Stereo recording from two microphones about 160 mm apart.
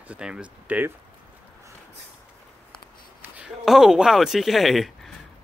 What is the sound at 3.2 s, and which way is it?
Speech, 5° right (ahead or behind).